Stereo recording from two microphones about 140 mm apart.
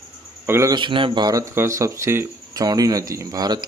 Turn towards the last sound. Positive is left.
turn(degrees=-30)  # may be behind; listen again after turning